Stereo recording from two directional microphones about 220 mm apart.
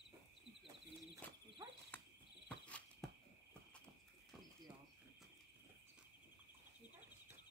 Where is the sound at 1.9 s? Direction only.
10° left (ahead or behind).